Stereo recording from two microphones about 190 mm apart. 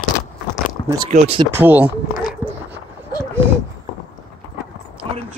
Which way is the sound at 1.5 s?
10° right (ahead or behind).